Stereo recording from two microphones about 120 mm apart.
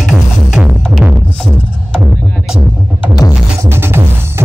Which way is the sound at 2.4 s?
5° right (ahead or behind).